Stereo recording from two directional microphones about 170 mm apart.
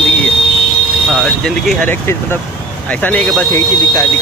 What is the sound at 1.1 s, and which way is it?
Speech, 5° left (ahead or behind).